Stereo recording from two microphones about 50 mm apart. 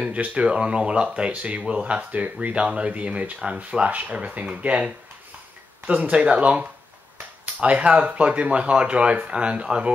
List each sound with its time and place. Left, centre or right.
0.0 s speech: right